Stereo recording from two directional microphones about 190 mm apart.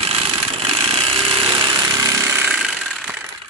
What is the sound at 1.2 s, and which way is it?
Jackhammer, 30° right (ahead or behind).